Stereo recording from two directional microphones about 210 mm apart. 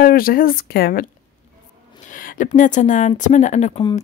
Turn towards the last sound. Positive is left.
turn(degrees=35)  # may be behind; listen again after turning